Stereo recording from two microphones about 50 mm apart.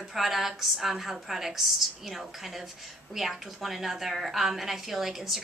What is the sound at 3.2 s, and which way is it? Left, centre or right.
A woman's voice, centre.